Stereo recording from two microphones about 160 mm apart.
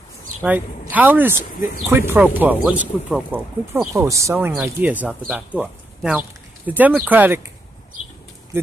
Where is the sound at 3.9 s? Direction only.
20° right (ahead or behind).